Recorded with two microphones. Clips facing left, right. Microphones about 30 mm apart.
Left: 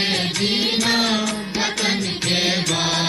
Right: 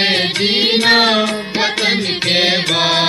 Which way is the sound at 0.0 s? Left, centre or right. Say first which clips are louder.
Right 6 dB; right.